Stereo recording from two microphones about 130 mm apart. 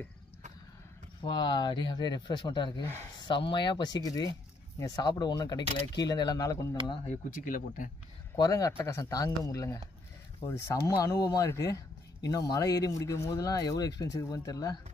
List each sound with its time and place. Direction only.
1.2 s speech: 35° left (ahead or behind)
7.1 s speech: 90° left
8.4 s speech: 25° left (ahead or behind)